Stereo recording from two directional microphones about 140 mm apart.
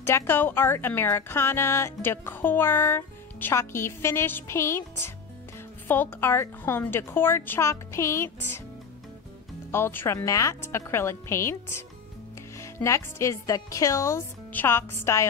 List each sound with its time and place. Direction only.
0.0 s a woman's voice: 15° left (ahead or behind)
9.7 s speech: 15° left (ahead or behind)